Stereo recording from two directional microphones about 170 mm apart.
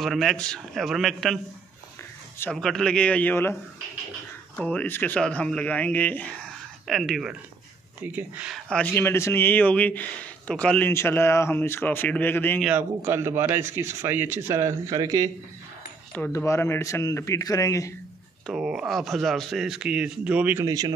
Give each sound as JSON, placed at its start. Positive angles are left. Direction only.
{"t": 0.0, "sound": "speech", "side_deg": 0}
{"t": 2.5, "sound": "speech", "side_deg": 5}
{"t": 4.6, "sound": "speech", "side_deg": 5}
{"t": 8.6, "sound": "speech", "side_deg": 5}
{"t": 12.6, "sound": "speech", "side_deg": -10}
{"t": 16.3, "sound": "speech", "side_deg": 15}
{"t": 18.5, "sound": "speech", "side_deg": -5}
{"t": 20.6, "sound": "speech", "side_deg": -20}